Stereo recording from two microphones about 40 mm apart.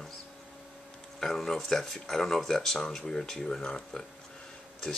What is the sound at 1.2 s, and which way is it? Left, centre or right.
Speech, centre.